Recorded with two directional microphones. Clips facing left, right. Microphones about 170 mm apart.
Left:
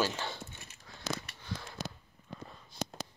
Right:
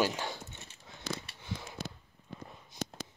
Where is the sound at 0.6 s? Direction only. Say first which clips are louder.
Left 1 dB; 25° right (ahead or behind).